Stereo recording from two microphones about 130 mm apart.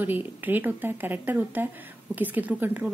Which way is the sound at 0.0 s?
15° right (ahead or behind).